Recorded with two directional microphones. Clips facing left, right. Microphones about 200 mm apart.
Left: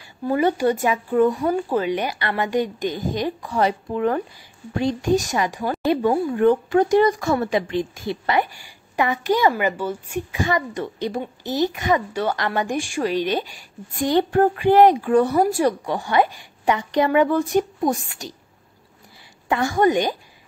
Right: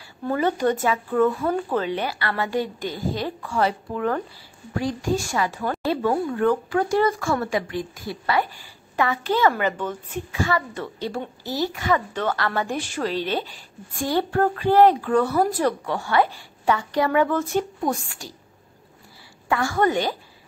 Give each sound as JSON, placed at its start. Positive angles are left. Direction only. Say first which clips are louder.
{"t": 0.3, "sound": "a woman's voice", "louder": "left 2 dB", "side_deg": 15}
{"t": 19.5, "sound": "a woman's voice", "louder": "left 3 dB", "side_deg": 20}